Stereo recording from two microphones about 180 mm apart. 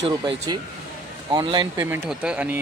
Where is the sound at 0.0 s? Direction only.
25° right (ahead or behind).